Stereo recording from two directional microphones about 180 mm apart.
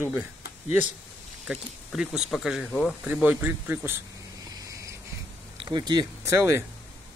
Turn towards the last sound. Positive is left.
turn(degrees=-10)  # may be behind; listen again after turning